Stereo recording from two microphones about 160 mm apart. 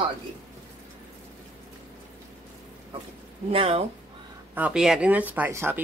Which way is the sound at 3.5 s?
35° right (ahead or behind).